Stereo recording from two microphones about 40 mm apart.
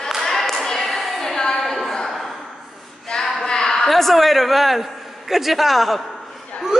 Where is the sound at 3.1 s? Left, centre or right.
Centre.